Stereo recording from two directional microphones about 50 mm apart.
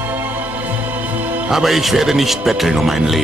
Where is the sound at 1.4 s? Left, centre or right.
Centre.